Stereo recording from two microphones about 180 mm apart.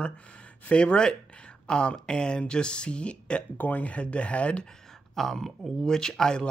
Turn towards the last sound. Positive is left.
turn(degrees=5)  # may be behind; listen again after turning